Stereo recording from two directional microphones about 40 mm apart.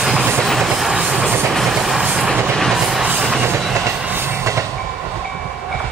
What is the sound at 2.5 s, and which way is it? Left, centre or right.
Train, centre.